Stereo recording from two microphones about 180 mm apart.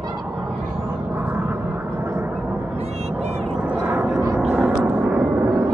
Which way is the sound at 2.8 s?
35° right (ahead or behind).